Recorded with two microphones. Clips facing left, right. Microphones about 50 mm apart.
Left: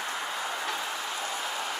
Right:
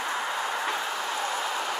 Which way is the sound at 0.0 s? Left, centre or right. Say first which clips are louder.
Right 4 dB; right.